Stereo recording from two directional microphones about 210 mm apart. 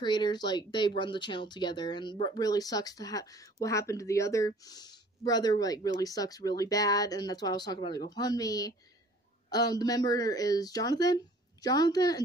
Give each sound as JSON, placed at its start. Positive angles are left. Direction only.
{"t": 0.0, "sound": "speech", "side_deg": 20}